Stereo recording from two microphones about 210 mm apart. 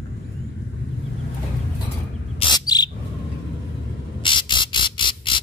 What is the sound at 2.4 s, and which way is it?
Bird, 20° left (ahead or behind).